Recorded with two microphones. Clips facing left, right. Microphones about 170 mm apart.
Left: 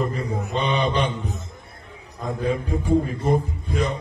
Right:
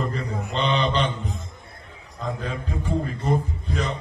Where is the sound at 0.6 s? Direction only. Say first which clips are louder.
Even; 10° left (ahead or behind).